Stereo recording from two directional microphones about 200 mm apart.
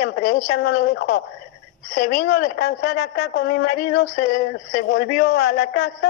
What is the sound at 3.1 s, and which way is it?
Speech, 50° left (ahead or behind).